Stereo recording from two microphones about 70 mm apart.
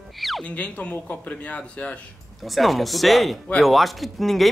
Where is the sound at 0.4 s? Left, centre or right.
Centre.